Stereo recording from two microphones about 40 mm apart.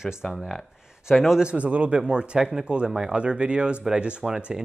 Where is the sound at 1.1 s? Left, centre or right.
Centre.